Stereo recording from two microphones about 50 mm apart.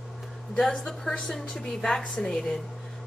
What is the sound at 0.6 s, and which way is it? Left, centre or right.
A woman's voice, centre.